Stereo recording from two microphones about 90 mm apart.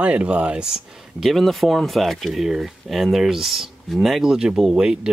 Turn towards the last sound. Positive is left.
turn(degrees=-5)  # may be behind; listen again after turning